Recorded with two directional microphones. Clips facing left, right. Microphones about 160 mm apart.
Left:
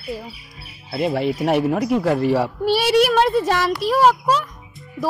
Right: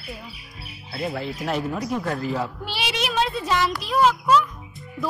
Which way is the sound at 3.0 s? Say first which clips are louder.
Left 6 dB; 55° left (ahead or behind).